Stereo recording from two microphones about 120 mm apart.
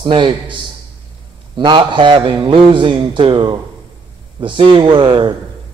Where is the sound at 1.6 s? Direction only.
40° right (ahead or behind).